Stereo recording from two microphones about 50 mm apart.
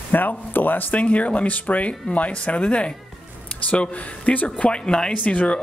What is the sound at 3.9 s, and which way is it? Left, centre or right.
Speech, left.